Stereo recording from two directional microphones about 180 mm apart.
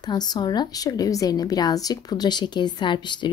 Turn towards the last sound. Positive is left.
turn(degrees=25)  # may be behind; listen again after turning